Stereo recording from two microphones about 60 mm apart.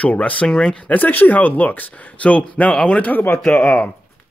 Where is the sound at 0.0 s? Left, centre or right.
Left.